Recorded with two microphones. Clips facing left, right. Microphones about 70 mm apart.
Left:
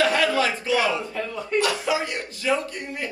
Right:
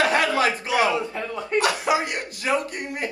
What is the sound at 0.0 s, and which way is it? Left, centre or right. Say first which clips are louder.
Chuckle: right 1 dB; right.